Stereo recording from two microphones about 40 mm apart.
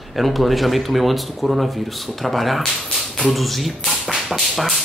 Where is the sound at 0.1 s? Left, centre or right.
Centre.